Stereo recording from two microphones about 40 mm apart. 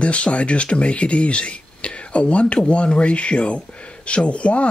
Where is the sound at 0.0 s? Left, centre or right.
Left.